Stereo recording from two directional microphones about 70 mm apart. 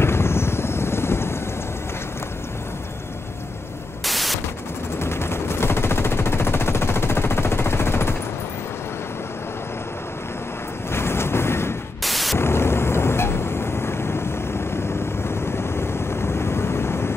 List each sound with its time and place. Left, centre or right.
0.0 s helicopter: left
4.0 s static: centre
5.0 s machine gun: left
10.9 s a sound: left
12.0 s static: centre
12.4 s vehicle: left